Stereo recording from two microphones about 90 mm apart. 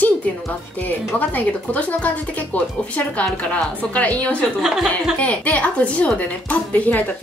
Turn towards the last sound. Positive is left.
turn(degrees=15)  # may be behind; listen again after turning